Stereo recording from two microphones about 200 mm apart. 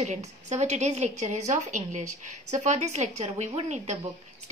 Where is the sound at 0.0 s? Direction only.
35° right (ahead or behind).